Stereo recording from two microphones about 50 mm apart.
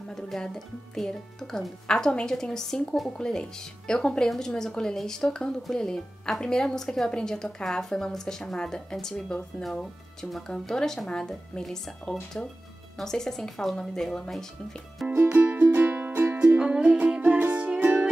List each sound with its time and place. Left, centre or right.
0.1 s speech: centre
15.0 s speech: centre
15.3 s music: right
16.3 s music: right